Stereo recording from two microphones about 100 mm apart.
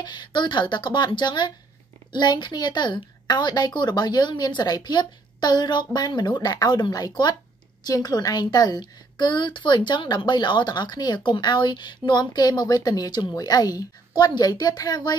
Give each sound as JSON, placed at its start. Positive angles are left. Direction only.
{"t": 0.0, "sound": "a woman's voice", "side_deg": 50}